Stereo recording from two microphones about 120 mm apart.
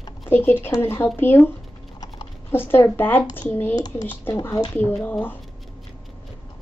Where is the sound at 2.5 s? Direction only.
20° left (ahead or behind).